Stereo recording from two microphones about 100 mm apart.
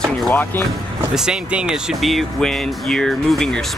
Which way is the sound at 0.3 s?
20° left (ahead or behind).